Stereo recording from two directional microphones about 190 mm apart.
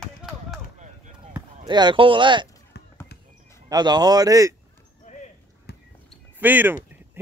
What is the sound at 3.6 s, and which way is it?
Speech, 20° right (ahead or behind).